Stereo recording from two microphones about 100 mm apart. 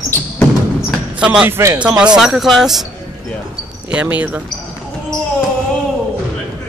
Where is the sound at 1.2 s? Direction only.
10° right (ahead or behind).